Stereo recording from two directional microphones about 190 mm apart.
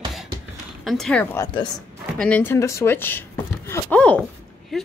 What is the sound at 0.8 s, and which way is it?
Speech, centre (ahead or behind).